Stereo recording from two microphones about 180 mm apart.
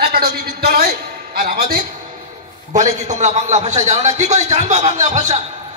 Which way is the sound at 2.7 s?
45° right (ahead or behind).